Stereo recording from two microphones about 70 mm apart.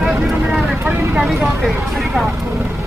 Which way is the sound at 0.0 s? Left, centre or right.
Centre.